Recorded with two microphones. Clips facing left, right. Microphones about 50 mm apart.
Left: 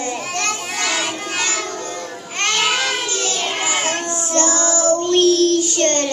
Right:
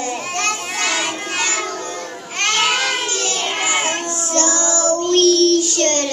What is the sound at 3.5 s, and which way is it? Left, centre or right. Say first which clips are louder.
Child singing: right 3 dB; centre.